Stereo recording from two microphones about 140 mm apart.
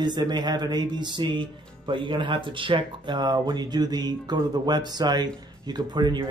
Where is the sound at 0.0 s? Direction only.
30° right (ahead or behind).